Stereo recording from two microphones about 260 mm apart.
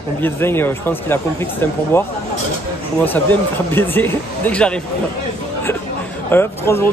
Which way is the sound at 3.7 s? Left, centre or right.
Centre.